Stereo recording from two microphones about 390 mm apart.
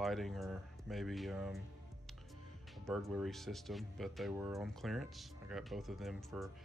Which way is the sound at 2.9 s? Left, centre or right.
Centre.